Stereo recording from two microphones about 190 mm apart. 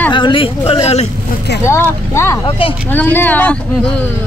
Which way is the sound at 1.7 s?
15° left (ahead or behind).